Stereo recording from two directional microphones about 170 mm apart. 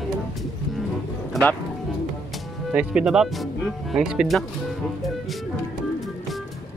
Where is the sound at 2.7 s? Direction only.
5° right (ahead or behind).